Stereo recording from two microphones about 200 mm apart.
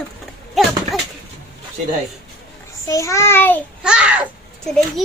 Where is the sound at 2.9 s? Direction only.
15° left (ahead or behind).